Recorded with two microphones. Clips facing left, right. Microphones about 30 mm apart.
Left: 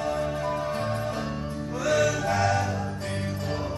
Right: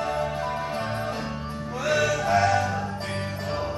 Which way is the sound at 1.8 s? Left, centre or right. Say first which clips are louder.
Even; right.